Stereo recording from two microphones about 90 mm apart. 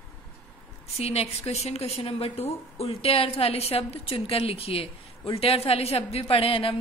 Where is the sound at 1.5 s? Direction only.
90° left.